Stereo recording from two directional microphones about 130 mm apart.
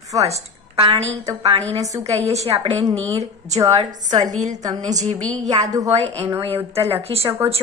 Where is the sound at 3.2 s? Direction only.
55° right (ahead or behind).